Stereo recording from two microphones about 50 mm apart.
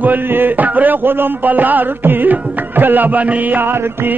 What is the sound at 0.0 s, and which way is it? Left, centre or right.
Music, right.